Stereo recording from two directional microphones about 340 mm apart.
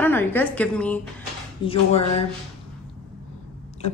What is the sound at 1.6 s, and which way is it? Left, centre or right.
Speech, centre.